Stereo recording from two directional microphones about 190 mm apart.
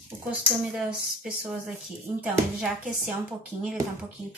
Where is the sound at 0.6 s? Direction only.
5° right (ahead or behind).